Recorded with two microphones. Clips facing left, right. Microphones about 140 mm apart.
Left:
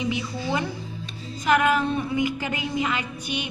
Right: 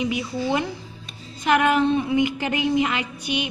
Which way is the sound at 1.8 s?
20° right (ahead or behind).